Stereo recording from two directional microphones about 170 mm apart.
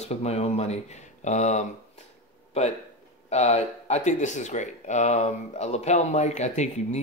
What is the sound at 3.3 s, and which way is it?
Speech, 40° left (ahead or behind).